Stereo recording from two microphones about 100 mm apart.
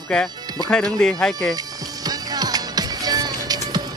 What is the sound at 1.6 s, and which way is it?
Music, 40° right (ahead or behind).